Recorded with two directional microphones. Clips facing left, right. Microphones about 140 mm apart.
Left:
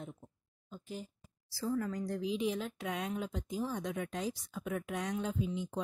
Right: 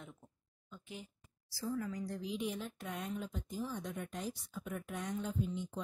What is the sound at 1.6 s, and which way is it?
A woman's voice, 70° left (ahead or behind).